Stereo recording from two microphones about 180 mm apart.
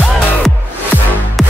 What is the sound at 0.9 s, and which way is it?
Music, 10° left (ahead or behind).